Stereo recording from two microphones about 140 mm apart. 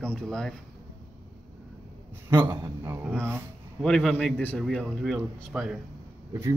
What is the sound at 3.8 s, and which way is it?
Speech, 5° left (ahead or behind).